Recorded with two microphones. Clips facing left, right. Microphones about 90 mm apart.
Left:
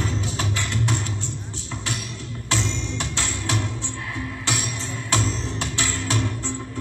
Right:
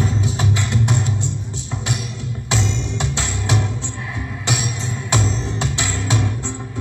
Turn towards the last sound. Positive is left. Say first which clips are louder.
# right 3 dB
turn(degrees=-20)  # may be behind; listen again after turning